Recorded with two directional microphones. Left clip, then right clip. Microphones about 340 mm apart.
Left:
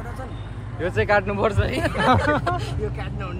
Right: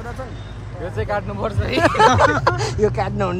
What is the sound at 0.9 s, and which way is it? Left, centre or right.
Speech, left.